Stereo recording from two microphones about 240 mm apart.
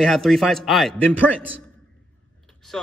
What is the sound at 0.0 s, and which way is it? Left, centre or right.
Speech, centre.